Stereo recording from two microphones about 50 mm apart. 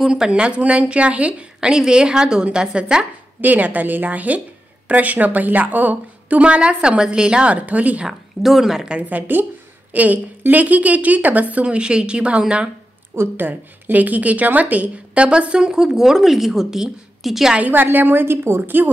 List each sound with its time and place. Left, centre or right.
0.1 s a woman's voice: centre
3.3 s a woman's voice: right
8.1 s a woman's voice: centre
9.1 s a woman's voice: right
11.6 s a woman's voice: centre
13.4 s a woman's voice: right; by 17.6 s centre
17.6 s a woman's voice: right
18.6 s a woman's voice: right